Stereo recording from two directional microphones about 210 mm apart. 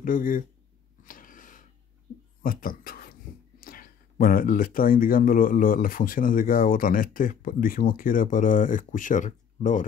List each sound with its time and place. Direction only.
0.0 s speech: 40° left (ahead or behind)
1.0 s a sound: 40° left (ahead or behind)
2.4 s speech: 45° left (ahead or behind)